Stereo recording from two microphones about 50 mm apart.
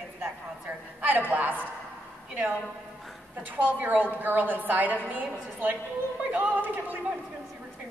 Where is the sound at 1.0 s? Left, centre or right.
Right.